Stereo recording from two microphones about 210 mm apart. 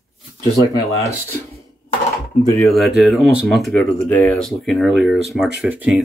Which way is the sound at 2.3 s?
40° left (ahead or behind).